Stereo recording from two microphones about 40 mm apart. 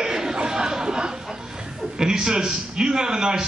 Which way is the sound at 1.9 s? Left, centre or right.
Centre.